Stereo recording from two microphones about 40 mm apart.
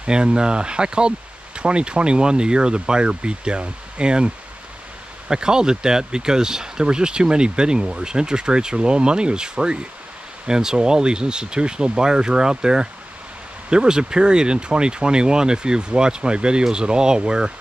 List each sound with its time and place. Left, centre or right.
0.0 s speech: right
5.3 s speech: centre